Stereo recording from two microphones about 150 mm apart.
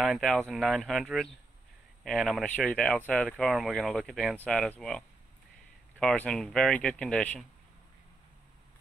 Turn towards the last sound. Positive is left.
turn(degrees=5)  # may be behind; listen again after turning